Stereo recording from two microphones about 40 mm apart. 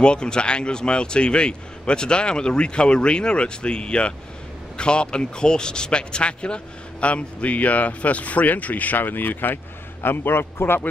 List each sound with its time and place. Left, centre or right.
0.0 s a man's voice: left
10.0 s a man's voice: left